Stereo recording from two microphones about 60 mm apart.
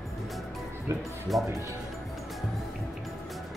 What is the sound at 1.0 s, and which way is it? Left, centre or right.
Speech, centre.